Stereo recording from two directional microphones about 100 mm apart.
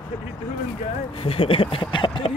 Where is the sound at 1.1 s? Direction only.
65° left (ahead or behind).